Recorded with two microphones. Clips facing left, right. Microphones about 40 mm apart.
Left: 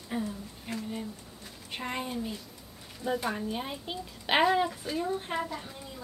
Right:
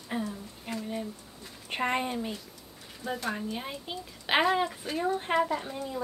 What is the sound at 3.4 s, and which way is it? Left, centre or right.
A child's voice, centre.